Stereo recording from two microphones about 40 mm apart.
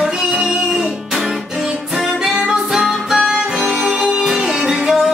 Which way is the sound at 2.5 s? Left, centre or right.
Centre.